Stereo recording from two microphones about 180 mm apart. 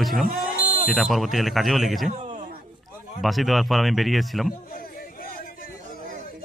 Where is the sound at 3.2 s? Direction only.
Centre (ahead or behind).